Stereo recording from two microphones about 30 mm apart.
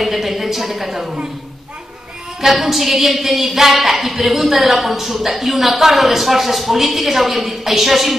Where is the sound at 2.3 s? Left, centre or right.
Centre.